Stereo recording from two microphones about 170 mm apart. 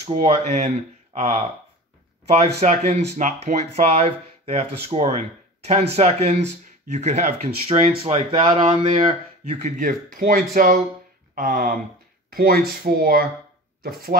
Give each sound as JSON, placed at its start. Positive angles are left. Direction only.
{"t": 0.0, "sound": "speech", "side_deg": -35}